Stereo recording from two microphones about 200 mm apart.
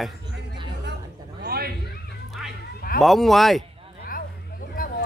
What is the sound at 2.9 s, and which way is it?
Speech, centre (ahead or behind).